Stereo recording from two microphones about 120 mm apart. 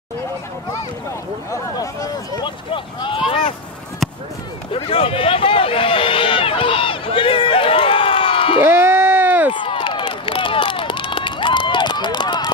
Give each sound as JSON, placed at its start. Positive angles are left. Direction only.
{"t": 1.5, "sound": "speech", "side_deg": 30}
{"t": 4.7, "sound": "run", "side_deg": 50}
{"t": 8.6, "sound": "a sound", "side_deg": -20}
{"t": 9.5, "sound": "run", "side_deg": 45}